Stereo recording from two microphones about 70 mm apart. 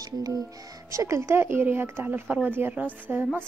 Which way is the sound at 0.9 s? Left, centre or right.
Right.